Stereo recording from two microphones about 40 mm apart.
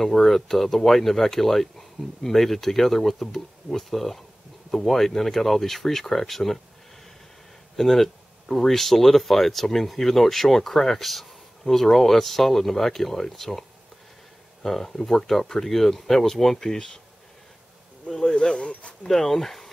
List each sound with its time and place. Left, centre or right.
0.0 s speech: centre
7.7 s speech: centre
18.0 s speech: left
19.0 s speech: centre